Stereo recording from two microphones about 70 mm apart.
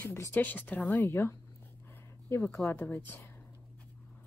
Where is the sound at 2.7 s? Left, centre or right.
Left.